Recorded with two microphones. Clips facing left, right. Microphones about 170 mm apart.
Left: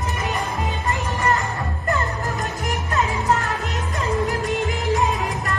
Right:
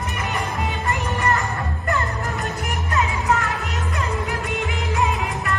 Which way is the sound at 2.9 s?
40° left (ahead or behind).